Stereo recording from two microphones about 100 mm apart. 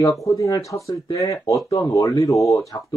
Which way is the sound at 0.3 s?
35° left (ahead or behind).